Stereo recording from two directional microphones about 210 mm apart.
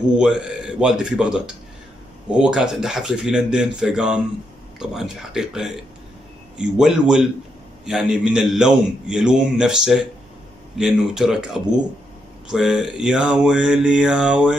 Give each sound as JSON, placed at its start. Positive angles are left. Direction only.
{"t": 0.2, "sound": "a man's voice", "side_deg": -5}